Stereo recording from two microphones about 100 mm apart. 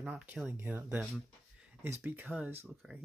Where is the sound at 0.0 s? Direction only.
15° right (ahead or behind).